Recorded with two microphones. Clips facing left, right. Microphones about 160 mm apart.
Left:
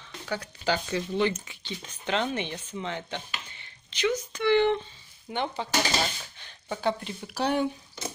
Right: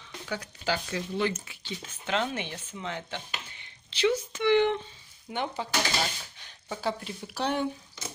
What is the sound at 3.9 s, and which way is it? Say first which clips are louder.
Speech: right 2 dB; 30° right (ahead or behind).